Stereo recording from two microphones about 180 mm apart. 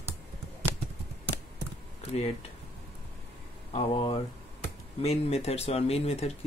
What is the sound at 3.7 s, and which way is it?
Speech, 30° left (ahead or behind).